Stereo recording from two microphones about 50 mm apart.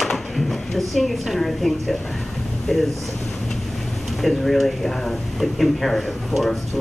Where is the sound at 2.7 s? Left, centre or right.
Centre.